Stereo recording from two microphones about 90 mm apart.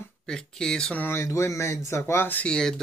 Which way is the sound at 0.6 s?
10° left (ahead or behind).